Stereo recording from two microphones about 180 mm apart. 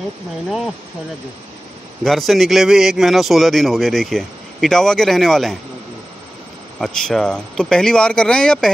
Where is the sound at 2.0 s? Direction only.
Centre (ahead or behind).